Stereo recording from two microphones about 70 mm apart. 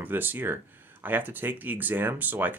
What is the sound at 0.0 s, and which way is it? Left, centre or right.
Speech, right.